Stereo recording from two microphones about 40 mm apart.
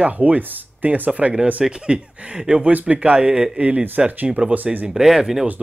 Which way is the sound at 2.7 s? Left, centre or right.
Right.